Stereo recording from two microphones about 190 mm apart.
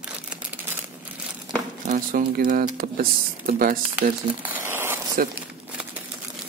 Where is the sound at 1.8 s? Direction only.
45° right (ahead or behind).